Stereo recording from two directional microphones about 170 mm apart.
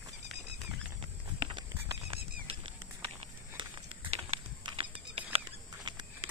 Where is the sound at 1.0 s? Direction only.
30° right (ahead or behind).